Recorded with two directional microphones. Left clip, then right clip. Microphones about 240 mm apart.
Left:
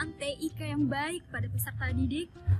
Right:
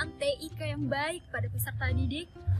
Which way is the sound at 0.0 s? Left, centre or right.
Centre.